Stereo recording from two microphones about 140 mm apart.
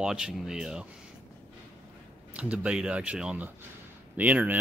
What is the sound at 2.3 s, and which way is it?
Speech, 10° right (ahead or behind).